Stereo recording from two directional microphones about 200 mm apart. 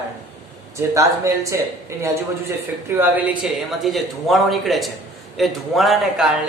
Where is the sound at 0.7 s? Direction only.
15° right (ahead or behind).